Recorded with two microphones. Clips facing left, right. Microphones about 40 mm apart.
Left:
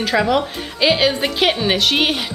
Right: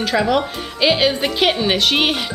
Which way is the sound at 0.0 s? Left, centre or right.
Centre.